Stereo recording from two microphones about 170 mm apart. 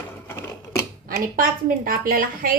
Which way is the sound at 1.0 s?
55° right (ahead or behind).